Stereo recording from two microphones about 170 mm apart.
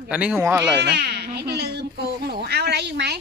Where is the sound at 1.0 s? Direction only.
75° right (ahead or behind).